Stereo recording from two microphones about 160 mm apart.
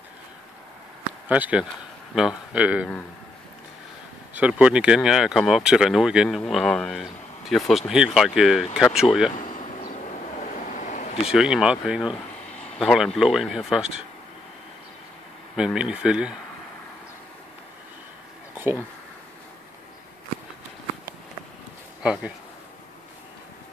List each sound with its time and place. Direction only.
1.3 s speech: 10° right (ahead or behind)
4.4 s speech: 5° right (ahead or behind)
9.4 s a sound: 55° left (ahead or behind)
10.4 s vehicle: 50° left (ahead or behind)
11.2 s speech: 5° right (ahead or behind)
12.4 s a sound: 45° left (ahead or behind)
12.7 s speech: centre (ahead or behind)
15.5 s speech: 5° right (ahead or behind)
22.0 s speech: 5° right (ahead or behind)